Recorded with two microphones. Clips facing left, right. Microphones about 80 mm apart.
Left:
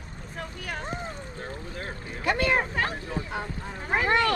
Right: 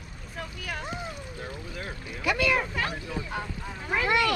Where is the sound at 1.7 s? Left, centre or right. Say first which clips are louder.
Left 1 dB; left.